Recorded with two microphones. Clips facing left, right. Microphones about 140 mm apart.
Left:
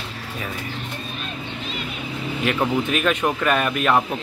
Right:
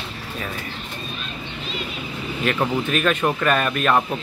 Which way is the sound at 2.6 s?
10° left (ahead or behind).